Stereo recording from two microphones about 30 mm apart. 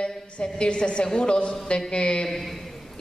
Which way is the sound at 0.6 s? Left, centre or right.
Left.